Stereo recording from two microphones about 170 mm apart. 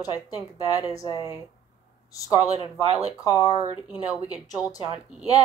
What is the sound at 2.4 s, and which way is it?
Speech, 35° right (ahead or behind).